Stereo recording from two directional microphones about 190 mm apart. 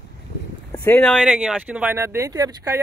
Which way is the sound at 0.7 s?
10° left (ahead or behind).